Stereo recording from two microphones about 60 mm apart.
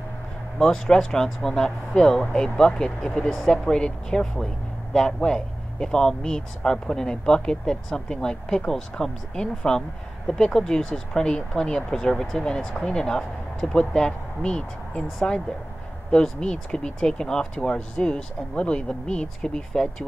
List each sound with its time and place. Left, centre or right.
0.6 s speech: centre